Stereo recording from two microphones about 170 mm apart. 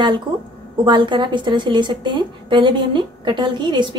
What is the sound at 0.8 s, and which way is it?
A woman's voice, 25° right (ahead or behind).